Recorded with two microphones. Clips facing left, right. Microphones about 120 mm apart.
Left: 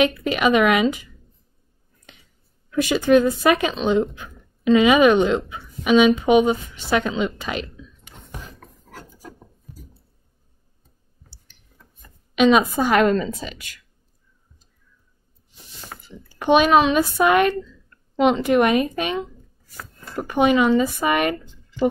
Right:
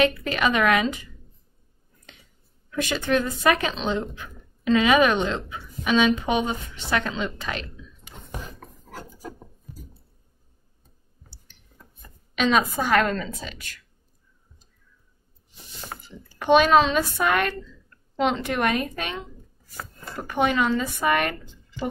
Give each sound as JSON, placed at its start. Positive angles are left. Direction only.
{"t": 0.0, "sound": "speech", "side_deg": 10}
{"t": 2.7, "sound": "speech", "side_deg": 10}
{"t": 8.3, "sound": "filing", "side_deg": -15}
{"t": 12.4, "sound": "speech", "side_deg": 15}
{"t": 16.3, "sound": "speech", "side_deg": 10}
{"t": 20.2, "sound": "speech", "side_deg": 15}